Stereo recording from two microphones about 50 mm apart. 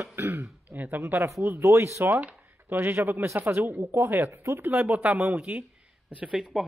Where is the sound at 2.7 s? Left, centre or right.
Right.